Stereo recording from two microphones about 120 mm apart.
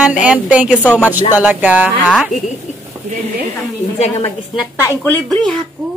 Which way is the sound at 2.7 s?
80° left.